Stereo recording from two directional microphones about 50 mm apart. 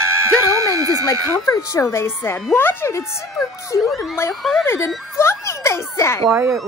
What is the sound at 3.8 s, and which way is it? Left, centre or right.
Speech, centre.